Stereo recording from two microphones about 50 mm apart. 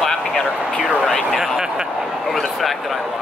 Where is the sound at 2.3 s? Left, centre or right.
Centre.